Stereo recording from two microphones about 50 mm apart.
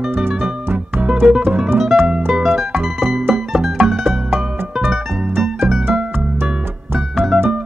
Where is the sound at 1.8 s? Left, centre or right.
Centre.